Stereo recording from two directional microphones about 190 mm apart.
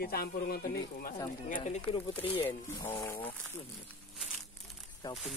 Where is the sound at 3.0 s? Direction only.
15° left (ahead or behind).